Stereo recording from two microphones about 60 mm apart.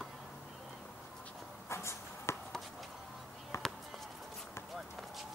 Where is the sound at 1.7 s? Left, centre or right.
Left.